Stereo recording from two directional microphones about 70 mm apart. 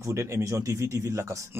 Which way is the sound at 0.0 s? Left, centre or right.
Right.